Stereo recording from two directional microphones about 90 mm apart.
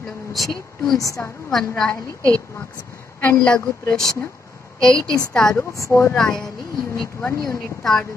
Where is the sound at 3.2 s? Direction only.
15° left (ahead or behind).